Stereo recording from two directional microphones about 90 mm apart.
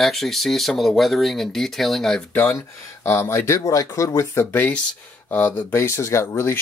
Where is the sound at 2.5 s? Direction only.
25° left (ahead or behind).